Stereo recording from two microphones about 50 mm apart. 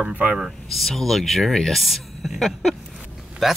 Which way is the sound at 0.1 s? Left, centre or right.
Right.